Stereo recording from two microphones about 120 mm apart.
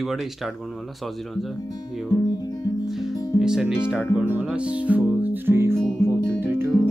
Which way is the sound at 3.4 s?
5° right (ahead or behind).